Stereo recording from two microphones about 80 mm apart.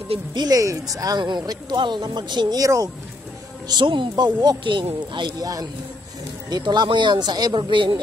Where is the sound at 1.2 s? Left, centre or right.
Right.